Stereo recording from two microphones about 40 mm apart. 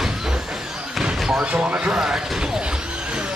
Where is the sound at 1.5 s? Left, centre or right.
Right.